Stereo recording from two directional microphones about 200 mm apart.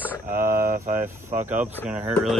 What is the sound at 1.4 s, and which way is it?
Speech, 10° right (ahead or behind).